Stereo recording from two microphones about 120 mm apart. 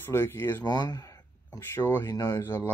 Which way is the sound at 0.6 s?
35° left (ahead or behind).